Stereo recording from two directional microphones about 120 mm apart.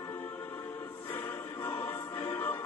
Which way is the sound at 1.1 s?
20° left (ahead or behind).